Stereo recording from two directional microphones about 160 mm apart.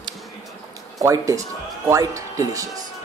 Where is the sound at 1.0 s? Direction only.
20° right (ahead or behind).